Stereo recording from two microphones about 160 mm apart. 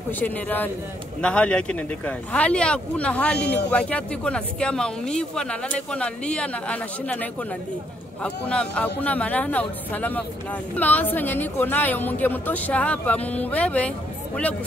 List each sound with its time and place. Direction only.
0.2 s a woman's voice: 10° left (ahead or behind)
3.3 s speech: 90° left
3.7 s a woman's voice: 5° left (ahead or behind)